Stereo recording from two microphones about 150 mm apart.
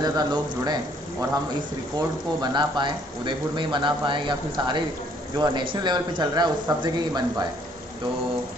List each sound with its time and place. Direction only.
0.0 s speech: 25° right (ahead or behind)
2.4 s speech: 30° right (ahead or behind)